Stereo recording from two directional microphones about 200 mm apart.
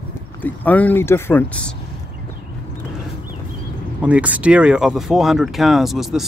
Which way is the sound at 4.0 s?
5° right (ahead or behind).